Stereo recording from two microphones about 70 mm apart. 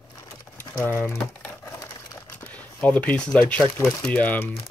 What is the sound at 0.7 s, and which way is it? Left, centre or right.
Speech, centre.